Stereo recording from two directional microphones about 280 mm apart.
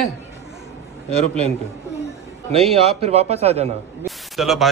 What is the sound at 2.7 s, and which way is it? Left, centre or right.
A man's voice, right.